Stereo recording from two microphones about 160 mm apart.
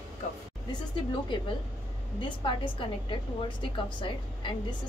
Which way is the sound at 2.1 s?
30° left (ahead or behind).